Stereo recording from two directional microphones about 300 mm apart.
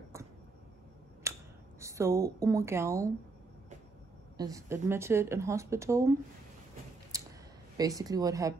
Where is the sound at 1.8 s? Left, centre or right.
Centre.